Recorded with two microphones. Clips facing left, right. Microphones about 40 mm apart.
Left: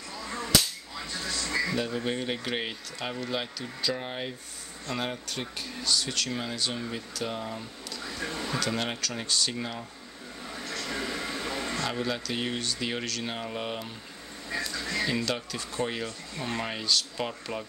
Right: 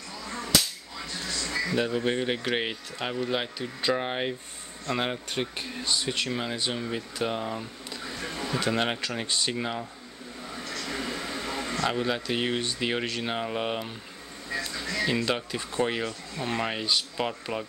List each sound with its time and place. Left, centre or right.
1.1 s music: centre
1.8 s speech: centre
8.2 s speech: centre
8.5 s speech: right
10.5 s a sound: centre
11.8 s speech: centre
14.7 s a sound: centre
15.2 s speech: right